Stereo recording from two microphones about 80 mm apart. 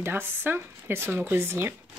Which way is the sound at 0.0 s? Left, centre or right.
Right.